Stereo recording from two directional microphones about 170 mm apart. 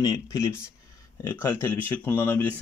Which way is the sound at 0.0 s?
15° left (ahead or behind).